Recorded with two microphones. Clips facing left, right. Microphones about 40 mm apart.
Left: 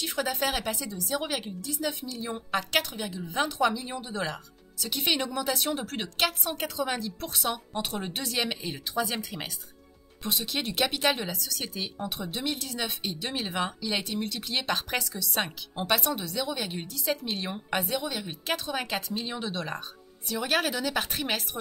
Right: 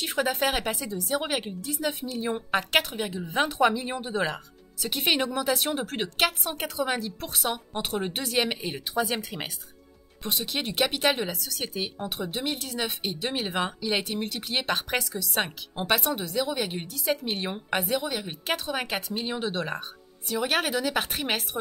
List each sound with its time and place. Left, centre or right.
0.0 s a woman's voice: right